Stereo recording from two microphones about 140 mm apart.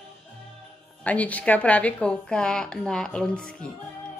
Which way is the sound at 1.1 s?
10° left (ahead or behind).